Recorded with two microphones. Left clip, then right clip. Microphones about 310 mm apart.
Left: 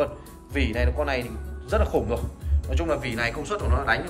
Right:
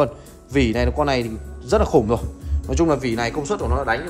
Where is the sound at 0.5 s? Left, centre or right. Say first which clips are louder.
Right 7 dB; centre.